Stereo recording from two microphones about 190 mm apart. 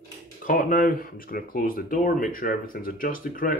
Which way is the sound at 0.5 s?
50° left (ahead or behind).